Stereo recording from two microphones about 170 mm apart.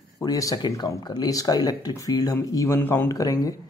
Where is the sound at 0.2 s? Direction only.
20° left (ahead or behind).